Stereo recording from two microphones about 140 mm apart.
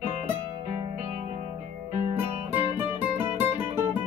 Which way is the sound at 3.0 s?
15° right (ahead or behind).